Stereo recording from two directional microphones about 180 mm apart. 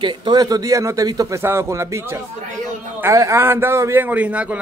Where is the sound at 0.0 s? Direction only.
25° right (ahead or behind).